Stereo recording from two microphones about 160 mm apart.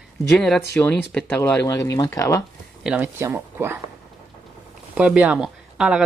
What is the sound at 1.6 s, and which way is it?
Speech, 20° left (ahead or behind).